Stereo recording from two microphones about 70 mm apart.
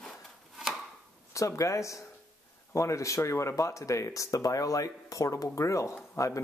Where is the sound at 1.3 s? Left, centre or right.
Left.